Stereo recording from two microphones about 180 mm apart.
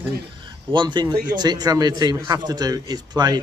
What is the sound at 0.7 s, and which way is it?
A man's voice, 25° right (ahead or behind).